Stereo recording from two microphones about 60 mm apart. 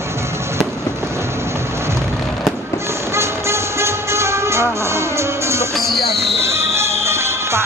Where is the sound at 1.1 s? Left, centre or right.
Right.